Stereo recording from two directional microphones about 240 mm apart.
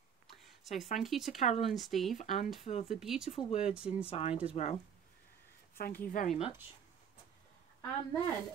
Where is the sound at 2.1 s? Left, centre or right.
Left.